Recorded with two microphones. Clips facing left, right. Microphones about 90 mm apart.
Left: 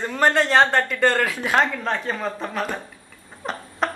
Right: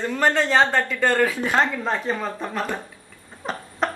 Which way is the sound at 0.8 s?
10° right (ahead or behind).